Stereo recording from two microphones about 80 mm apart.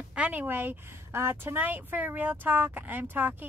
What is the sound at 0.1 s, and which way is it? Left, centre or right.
A woman's voice, centre.